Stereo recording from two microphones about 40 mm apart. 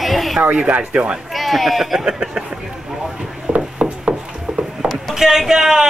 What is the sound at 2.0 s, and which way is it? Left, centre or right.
Speech, centre.